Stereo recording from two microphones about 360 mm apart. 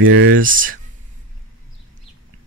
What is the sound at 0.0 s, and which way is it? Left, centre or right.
Speech, right.